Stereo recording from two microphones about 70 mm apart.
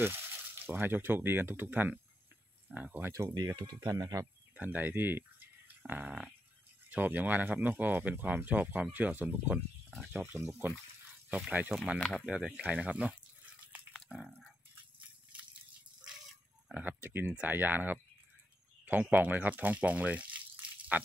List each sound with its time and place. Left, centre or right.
0.7 s speech: right
3.1 s speech: right
4.6 s speech: right
5.8 s a sound: right
6.9 s speech: right
12.0 s speech: centre
12.3 s speech: centre
16.7 s speech: right